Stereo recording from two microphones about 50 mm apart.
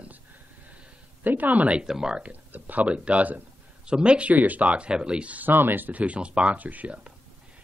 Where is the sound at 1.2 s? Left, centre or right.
Right.